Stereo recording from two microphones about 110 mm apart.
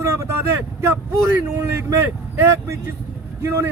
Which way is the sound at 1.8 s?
25° right (ahead or behind).